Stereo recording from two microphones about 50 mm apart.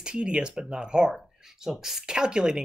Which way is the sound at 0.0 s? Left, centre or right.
Centre.